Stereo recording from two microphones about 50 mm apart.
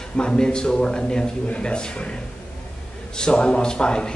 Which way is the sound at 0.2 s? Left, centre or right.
Centre.